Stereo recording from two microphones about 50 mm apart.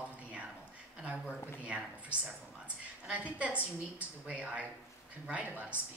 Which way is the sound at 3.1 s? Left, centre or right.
Right.